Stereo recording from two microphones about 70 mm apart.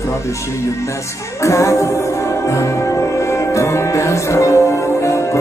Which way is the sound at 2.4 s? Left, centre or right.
Left.